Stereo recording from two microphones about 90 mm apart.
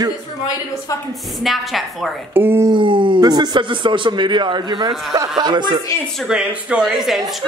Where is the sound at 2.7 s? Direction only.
65° right (ahead or behind).